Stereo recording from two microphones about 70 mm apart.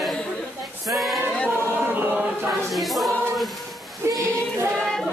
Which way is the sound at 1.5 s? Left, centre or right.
Right.